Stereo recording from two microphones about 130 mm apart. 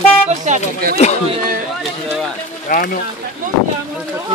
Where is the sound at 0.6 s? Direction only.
60° left (ahead or behind).